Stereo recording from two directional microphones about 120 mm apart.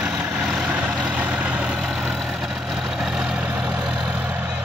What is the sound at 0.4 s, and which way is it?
Vehicle, 10° right (ahead or behind).